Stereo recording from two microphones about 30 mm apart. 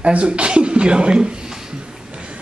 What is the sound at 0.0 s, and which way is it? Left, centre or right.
Speech, right.